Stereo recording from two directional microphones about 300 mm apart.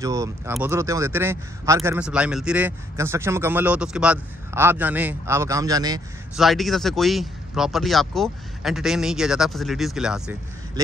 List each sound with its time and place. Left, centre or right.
0.0 s speech: centre
6.3 s speech: centre